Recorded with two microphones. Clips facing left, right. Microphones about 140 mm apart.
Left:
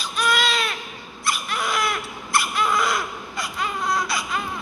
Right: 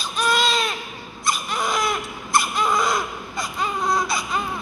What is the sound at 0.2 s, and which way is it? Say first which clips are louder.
Baby cry: right 1 dB; 35° right (ahead or behind).